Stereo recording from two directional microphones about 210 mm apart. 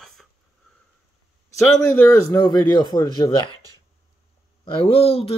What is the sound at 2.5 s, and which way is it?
Speech, 20° left (ahead or behind).